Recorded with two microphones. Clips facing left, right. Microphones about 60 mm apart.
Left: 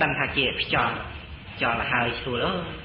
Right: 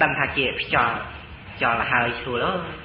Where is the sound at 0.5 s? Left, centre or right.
Right.